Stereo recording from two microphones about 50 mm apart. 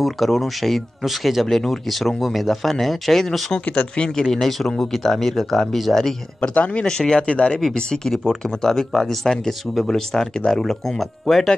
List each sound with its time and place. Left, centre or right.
0.0 s speech: centre
3.9 s speech: centre
4.2 s speech: centre
6.5 s speech: left
6.9 s speech: centre